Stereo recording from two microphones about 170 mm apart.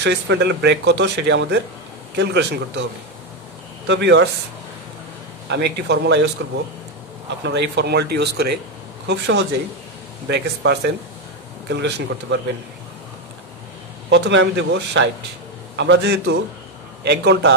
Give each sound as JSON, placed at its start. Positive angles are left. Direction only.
{"t": 0.0, "sound": "speech", "side_deg": -90}
{"t": 3.8, "sound": "speech", "side_deg": -90}
{"t": 5.5, "sound": "speech", "side_deg": -85}
{"t": 7.4, "sound": "speech", "side_deg": -90}
{"t": 9.0, "sound": "speech", "side_deg": -90}
{"t": 14.1, "sound": "speech", "side_deg": -90}